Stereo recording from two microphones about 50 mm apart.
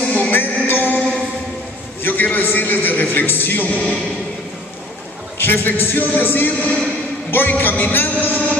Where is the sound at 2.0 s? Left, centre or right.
Left.